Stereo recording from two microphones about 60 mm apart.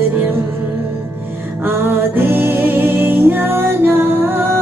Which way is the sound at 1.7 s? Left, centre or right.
Right.